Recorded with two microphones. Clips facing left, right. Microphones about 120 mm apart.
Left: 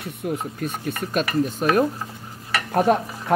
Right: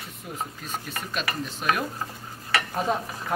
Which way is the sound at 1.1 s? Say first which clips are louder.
Left 9 dB; 45° left (ahead or behind).